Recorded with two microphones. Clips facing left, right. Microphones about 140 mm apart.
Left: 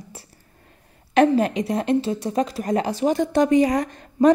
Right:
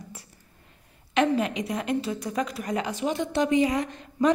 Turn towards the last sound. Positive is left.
turn(degrees=45)  # may be behind; listen again after turning